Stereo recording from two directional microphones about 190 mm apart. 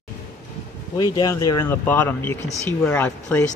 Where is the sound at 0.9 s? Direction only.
20° left (ahead or behind).